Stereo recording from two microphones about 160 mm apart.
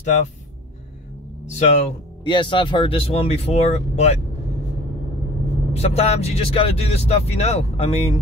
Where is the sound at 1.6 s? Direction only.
45° left (ahead or behind).